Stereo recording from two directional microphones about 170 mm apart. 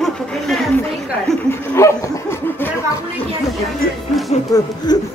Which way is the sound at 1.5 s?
15° left (ahead or behind).